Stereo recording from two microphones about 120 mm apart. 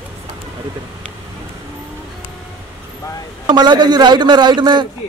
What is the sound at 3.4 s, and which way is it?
A man's voice, 35° right (ahead or behind).